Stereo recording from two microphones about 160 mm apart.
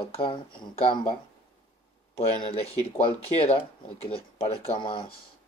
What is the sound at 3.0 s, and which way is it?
Speech, 40° left (ahead or behind).